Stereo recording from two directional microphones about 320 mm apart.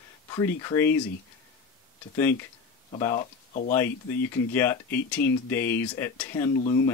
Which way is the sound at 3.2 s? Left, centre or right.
Left.